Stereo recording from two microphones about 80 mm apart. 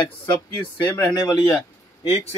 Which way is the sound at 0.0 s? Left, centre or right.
Left.